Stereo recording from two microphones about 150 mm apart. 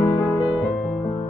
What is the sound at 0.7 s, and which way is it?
Music, 5° left (ahead or behind).